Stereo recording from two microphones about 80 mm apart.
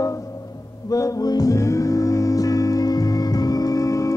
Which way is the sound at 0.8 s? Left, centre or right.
Left.